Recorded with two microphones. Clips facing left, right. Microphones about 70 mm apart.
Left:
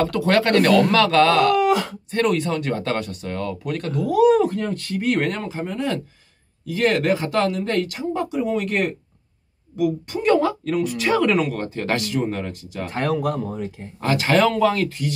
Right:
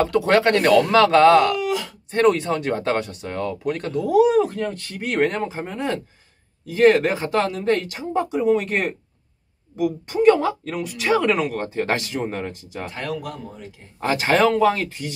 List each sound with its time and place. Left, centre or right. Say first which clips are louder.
0.0 s speech: right 2 dB; centre
1.6 s a sound: left 6 dB; left
2.0 s speech: right 4 dB; right
4.3 s speech: left 2 dB; centre
12.9 s speech: left 9 dB; left
14.0 s speech: even; right